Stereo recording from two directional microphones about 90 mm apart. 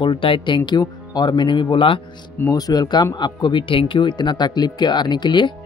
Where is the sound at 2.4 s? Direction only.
45° left (ahead or behind).